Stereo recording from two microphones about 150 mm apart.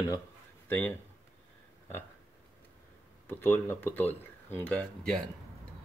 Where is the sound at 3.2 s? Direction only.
15° left (ahead or behind).